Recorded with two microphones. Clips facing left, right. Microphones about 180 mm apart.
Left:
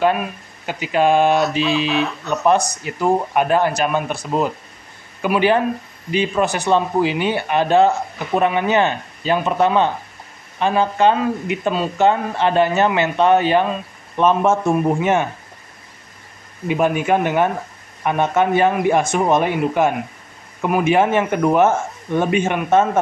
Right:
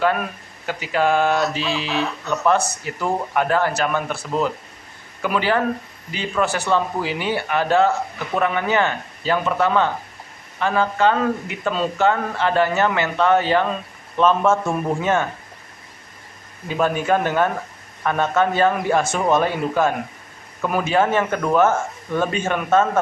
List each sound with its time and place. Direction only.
0.7 s speech: 20° left (ahead or behind)
2.0 s speech: centre (ahead or behind)
2.4 s speech: 15° left (ahead or behind)
16.6 s speech: 15° left (ahead or behind)